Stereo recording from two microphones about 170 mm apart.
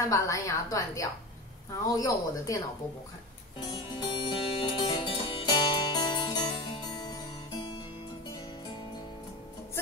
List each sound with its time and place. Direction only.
0.0 s a woman's voice: 20° left (ahead or behind)
3.5 s music: 25° left (ahead or behind)